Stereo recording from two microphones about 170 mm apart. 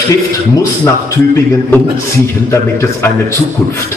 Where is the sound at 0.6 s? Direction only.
15° left (ahead or behind).